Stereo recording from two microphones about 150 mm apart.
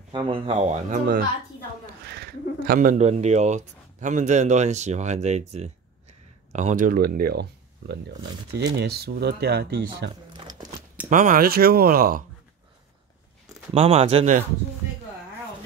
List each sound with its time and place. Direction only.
0.1 s a man's voice: 35° right (ahead or behind); by 1.2 s 65° right (ahead or behind)
2.0 s a sound: 90° right
2.6 s a man's voice: 70° right (ahead or behind); by 10.0 s 90° right
10.3 s a sound: 25° right (ahead or behind)
11.1 s speech: 60° right (ahead or behind)
13.7 s speech: 40° right (ahead or behind)